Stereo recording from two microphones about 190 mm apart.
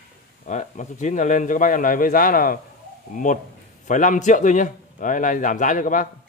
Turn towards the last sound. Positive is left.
turn(degrees=45)  # may be behind; listen again after turning